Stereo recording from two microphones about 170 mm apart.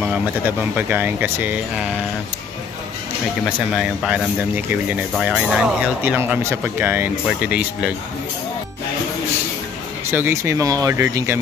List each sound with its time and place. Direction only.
0.0 s speech: 10° right (ahead or behind)
3.4 s speech: 5° right (ahead or behind)
10.1 s speech: 15° right (ahead or behind)